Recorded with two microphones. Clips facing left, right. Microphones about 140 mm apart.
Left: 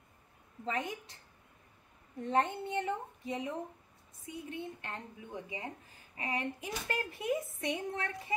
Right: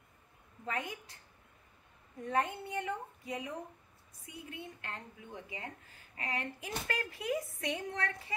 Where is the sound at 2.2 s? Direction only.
25° left (ahead or behind).